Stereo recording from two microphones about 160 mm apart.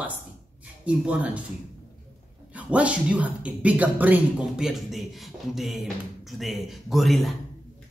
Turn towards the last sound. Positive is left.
turn(degrees=0)  # may be behind; listen again after turning